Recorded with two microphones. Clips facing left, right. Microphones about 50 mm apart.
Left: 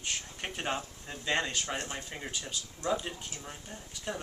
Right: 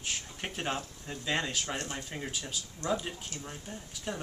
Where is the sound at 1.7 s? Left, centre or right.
Centre.